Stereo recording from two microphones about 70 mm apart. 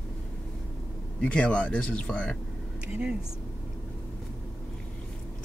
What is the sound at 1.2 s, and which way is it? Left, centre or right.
Speech, centre.